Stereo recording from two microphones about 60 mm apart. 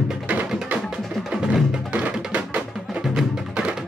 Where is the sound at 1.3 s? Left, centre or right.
Centre.